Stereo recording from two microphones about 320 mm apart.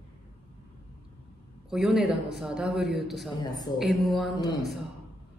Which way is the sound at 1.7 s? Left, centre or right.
Centre.